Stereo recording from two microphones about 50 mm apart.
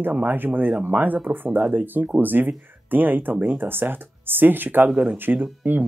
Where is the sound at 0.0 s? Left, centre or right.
Right.